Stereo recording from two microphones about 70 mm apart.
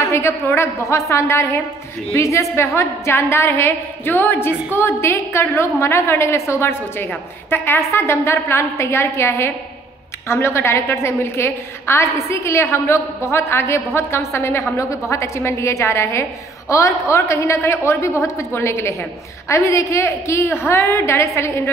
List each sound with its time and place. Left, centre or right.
0.0 s a woman's voice: left